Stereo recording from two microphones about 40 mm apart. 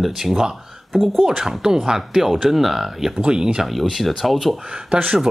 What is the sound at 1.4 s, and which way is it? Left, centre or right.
Speech, centre.